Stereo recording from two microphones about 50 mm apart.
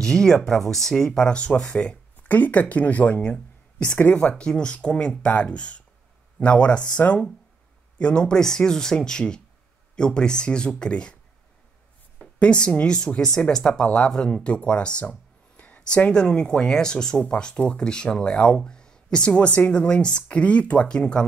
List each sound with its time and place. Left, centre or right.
0.0 s speech: centre
1.2 s speech: centre
2.2 s speech: left
4.2 s speech: left
12.4 s speech: left
16.1 s speech: centre